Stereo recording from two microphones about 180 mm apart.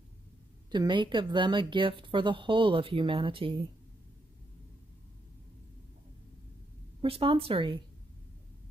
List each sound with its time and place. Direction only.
0.7 s speech: 25° right (ahead or behind)
7.0 s speech: 30° right (ahead or behind)